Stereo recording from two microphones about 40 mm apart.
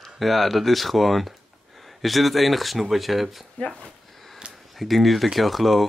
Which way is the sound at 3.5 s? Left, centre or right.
Centre.